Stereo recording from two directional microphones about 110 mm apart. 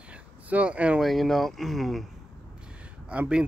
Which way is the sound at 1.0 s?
Centre (ahead or behind).